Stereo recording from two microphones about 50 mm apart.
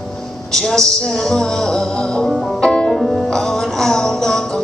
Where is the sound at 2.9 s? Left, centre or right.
Centre.